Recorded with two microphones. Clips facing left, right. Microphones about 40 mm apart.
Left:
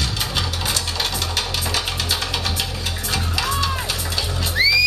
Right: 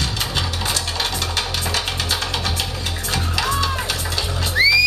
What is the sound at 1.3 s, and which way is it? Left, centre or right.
Music, centre.